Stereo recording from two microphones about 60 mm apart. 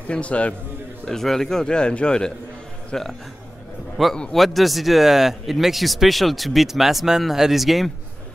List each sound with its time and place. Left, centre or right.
0.1 s a man's voice: left
1.0 s a man's voice: centre
4.3 s speech: centre